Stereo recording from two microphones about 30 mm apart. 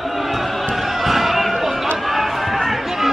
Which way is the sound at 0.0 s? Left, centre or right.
Centre.